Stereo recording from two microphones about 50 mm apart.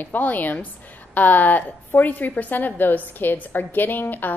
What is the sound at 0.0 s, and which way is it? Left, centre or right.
A woman's voice, left.